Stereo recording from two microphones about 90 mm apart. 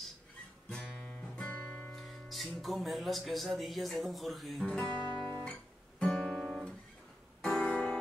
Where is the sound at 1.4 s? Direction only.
20° left (ahead or behind).